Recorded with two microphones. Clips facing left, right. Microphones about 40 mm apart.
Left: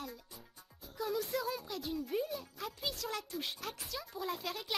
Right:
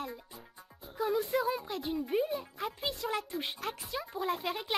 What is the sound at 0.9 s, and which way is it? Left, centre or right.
A child's voice, right.